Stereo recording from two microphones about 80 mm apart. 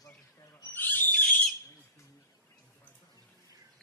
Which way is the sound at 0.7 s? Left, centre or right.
Left.